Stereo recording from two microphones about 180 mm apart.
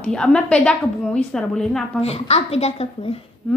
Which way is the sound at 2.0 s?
35° left (ahead or behind).